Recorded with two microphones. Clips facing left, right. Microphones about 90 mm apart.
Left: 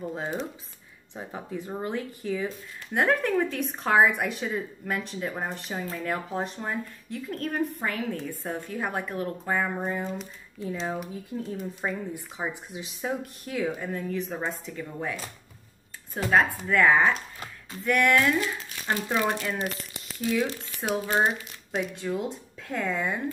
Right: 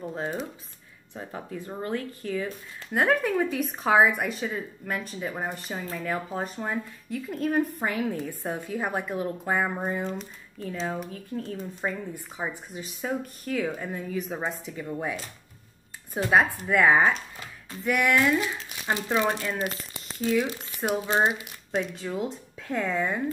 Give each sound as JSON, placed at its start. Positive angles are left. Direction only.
{"t": 0.0, "sound": "a woman's voice", "side_deg": 0}
{"t": 1.1, "sound": "speech", "side_deg": 15}
{"t": 2.9, "sound": "a woman's voice", "side_deg": 0}
{"t": 10.6, "sound": "a woman's voice", "side_deg": 5}
{"t": 11.1, "sound": "a woman's voice", "side_deg": 15}
{"t": 13.7, "sound": "a woman's voice", "side_deg": -5}
{"t": 21.7, "sound": "a woman's voice", "side_deg": 0}